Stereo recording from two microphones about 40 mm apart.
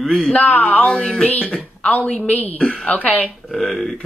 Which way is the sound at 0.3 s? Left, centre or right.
Left.